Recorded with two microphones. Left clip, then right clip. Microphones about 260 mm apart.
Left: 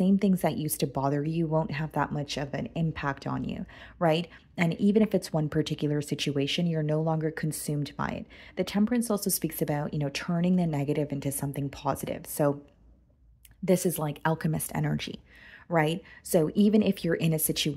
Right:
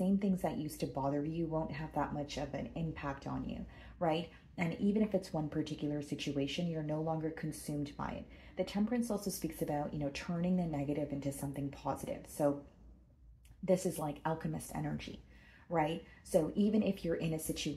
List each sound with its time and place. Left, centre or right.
0.0 s speech: left
13.7 s speech: left